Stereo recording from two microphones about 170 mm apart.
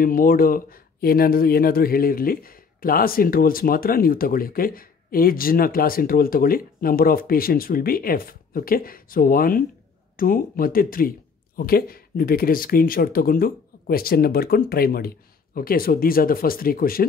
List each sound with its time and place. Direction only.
0.0 s speech: 55° left (ahead or behind)